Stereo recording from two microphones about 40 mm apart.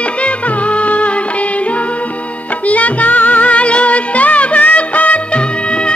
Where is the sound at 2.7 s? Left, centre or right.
Left.